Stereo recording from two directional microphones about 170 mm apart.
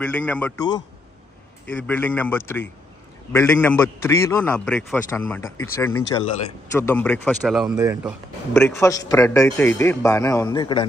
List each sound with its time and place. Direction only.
0.0 s a man's voice: 10° left (ahead or behind)
1.7 s a man's voice: 10° left (ahead or behind)
7.7 s speech: 20° right (ahead or behind)
8.5 s a man's voice: 15° left (ahead or behind)